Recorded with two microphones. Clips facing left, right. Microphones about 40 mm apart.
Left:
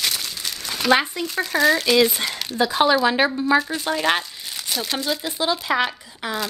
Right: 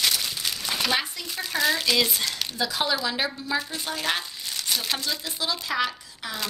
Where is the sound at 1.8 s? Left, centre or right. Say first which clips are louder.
Left 6 dB; centre.